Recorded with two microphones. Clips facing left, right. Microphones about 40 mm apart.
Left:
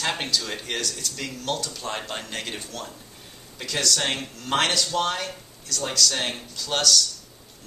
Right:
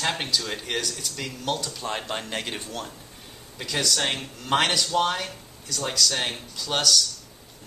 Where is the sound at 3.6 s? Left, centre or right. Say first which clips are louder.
Even; centre.